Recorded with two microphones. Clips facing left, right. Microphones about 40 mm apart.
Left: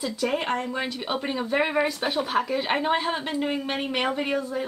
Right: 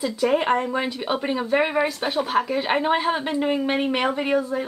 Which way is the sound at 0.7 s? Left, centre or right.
Centre.